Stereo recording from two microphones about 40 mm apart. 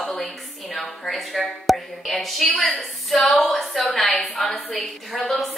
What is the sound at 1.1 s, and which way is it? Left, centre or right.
A woman's voice, centre.